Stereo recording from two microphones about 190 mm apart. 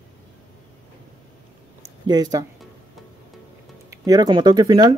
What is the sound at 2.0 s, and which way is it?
Speech, 20° right (ahead or behind).